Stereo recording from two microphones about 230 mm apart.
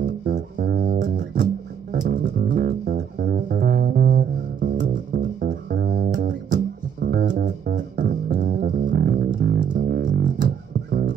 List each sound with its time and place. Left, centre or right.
0.0 s music: right